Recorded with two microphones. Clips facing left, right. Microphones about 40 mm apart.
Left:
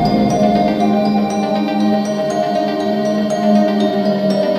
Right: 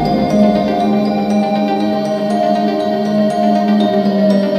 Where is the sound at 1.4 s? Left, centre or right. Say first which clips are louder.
Right 2 dB; centre.